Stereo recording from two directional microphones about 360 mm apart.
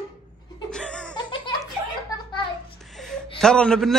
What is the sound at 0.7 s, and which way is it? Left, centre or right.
Laughter, centre.